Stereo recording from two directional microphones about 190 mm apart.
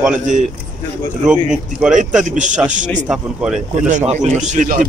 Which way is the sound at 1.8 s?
5° right (ahead or behind).